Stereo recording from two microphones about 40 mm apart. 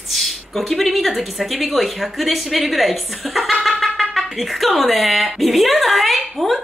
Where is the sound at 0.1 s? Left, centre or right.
Centre.